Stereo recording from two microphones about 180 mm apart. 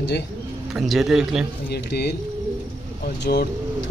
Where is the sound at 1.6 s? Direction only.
65° left (ahead or behind).